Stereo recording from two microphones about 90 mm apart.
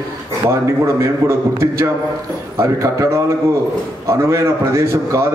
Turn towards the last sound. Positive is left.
turn(degrees=-30)  # may be behind; listen again after turning